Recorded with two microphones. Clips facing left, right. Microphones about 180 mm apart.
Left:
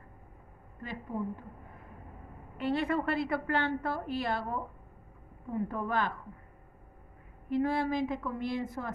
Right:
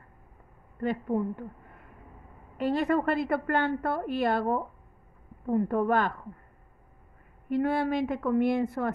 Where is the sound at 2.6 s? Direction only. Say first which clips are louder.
Right 4 dB; 45° right (ahead or behind).